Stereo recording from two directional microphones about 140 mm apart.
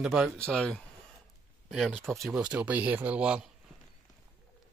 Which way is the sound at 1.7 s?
5° right (ahead or behind).